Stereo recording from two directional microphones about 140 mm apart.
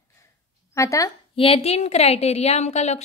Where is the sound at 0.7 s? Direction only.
25° left (ahead or behind).